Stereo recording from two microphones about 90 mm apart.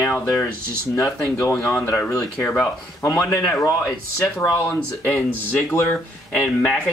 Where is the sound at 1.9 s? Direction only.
30° left (ahead or behind).